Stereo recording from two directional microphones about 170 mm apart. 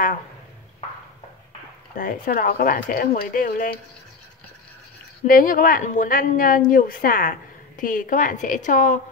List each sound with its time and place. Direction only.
2.0 s speech: 55° left (ahead or behind)
5.2 s a woman's voice: 55° left (ahead or behind)